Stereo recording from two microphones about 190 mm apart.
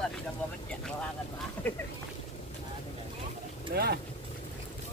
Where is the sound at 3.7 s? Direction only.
55° right (ahead or behind).